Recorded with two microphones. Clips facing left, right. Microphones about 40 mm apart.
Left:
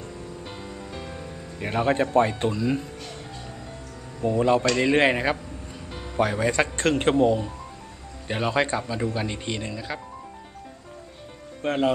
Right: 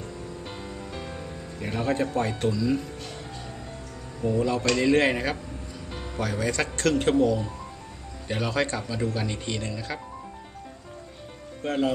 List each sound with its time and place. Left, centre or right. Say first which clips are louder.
0.7 s music: even; centre
1.6 s speech: left 4 dB; left
4.4 s speech: left 4 dB; left; by 9.9 s centre
11.6 s speech: left 2 dB; left